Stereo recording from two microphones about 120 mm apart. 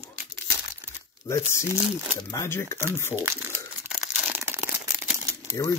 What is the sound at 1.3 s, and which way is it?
Speech, 25° left (ahead or behind).